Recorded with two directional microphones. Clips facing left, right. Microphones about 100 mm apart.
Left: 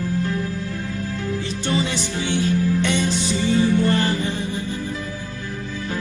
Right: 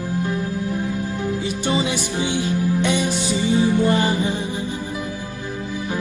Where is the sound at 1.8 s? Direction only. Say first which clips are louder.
Right 2 dB; 15° right (ahead or behind).